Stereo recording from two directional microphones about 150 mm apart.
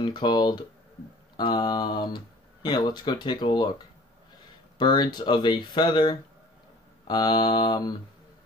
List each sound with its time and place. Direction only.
0.0 s speech: 30° left (ahead or behind)